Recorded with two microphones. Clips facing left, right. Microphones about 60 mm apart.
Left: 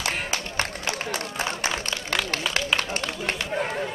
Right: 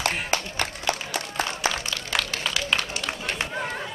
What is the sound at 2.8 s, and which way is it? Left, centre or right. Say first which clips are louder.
Run: left 3 dB; left.